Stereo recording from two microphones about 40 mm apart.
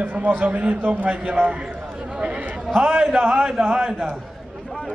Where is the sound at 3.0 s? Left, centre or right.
Centre.